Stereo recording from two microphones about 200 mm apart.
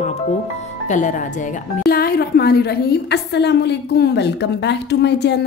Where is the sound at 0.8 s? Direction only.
40° left (ahead or behind).